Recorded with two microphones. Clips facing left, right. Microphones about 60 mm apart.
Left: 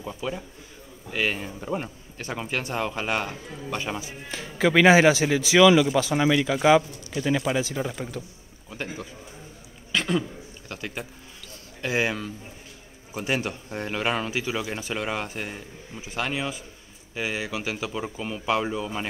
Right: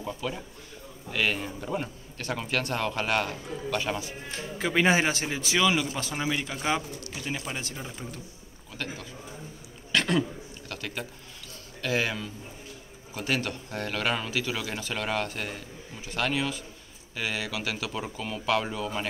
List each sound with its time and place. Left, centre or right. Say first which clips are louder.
0.2 s a man's voice: left 2 dB; centre
4.6 s speech: left 7 dB; left
8.8 s a man's voice: left 2 dB; left
9.9 s a sound: even; centre
10.7 s a man's voice: left 2 dB; centre
18.1 s a man's voice: left 1 dB; centre